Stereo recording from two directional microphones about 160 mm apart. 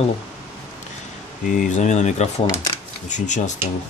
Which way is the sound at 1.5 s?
55° left (ahead or behind).